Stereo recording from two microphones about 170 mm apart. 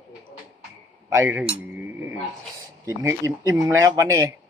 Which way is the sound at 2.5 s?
20° right (ahead or behind).